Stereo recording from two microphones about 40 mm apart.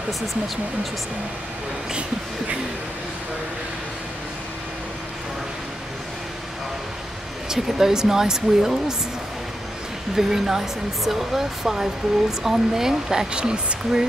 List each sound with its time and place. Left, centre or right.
7.4 s speech: centre
10.1 s speech: centre